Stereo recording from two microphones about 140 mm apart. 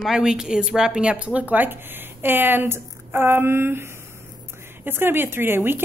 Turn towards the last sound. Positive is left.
turn(degrees=-15)  # may be behind; listen again after turning